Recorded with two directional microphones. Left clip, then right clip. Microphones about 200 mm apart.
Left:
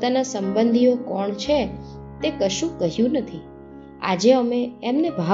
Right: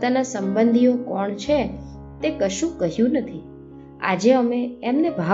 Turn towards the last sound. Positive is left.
turn(degrees=25)  # may be behind; listen again after turning